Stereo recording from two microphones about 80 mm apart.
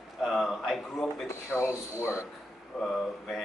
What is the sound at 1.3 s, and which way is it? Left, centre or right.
Speech, left.